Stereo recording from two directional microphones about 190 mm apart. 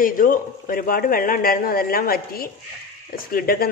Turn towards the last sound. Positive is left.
turn(degrees=50)  # may be behind; listen again after turning